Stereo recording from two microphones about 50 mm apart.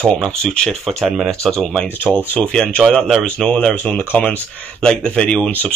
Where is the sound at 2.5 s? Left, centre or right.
Centre.